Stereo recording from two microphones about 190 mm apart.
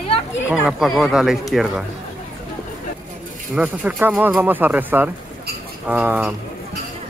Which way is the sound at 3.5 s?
10° right (ahead or behind).